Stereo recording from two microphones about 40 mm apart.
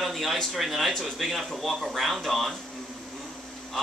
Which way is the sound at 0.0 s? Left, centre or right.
Centre.